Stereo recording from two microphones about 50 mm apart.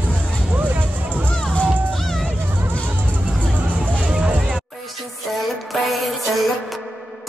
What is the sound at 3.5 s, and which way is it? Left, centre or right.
Hubbub, right.